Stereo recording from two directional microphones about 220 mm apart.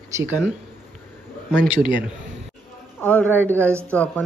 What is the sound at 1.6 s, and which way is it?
Speech, 20° left (ahead or behind).